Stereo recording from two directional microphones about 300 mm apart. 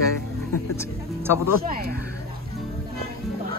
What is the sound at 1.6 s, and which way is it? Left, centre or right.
Speech, right.